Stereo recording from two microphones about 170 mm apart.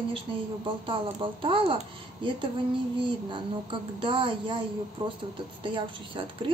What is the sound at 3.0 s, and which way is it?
Speech, 30° right (ahead or behind).